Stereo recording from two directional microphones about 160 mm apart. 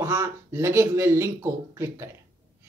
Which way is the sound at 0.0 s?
15° right (ahead or behind).